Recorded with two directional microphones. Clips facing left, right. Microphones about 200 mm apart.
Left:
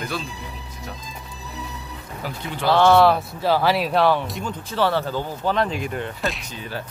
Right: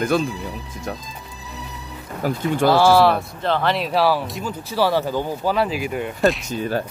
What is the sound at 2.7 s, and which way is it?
Speech, 5° right (ahead or behind).